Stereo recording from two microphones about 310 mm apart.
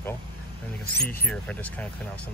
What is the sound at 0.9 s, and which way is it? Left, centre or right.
Speech, left.